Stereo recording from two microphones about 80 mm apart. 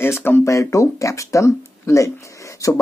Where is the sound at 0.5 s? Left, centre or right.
Left.